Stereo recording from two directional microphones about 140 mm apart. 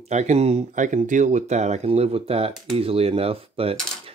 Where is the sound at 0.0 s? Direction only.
55° right (ahead or behind).